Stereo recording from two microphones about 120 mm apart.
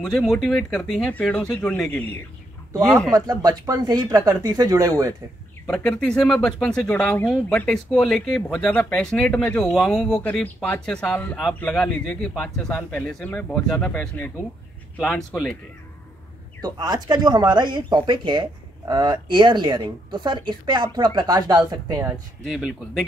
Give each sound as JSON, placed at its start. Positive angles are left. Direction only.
{"t": 0.0, "sound": "speech", "side_deg": 0}
{"t": 3.1, "sound": "speech", "side_deg": -30}
{"t": 5.7, "sound": "speech", "side_deg": 5}
{"t": 16.6, "sound": "speech", "side_deg": -35}
{"t": 22.4, "sound": "speech", "side_deg": 0}